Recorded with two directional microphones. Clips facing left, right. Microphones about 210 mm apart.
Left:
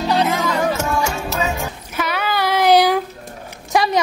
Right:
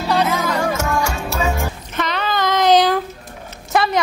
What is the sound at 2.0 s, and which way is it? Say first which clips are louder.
Child singing: even; 10° left (ahead or behind).